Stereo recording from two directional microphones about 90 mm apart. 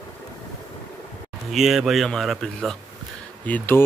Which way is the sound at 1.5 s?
Centre (ahead or behind).